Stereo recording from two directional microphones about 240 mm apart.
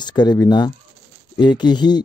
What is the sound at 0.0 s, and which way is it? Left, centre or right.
Speech, centre.